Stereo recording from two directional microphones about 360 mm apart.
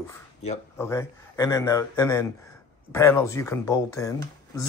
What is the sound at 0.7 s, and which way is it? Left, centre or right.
A man's voice, centre.